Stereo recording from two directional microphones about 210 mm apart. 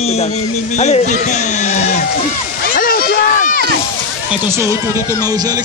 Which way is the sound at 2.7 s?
45° left (ahead or behind).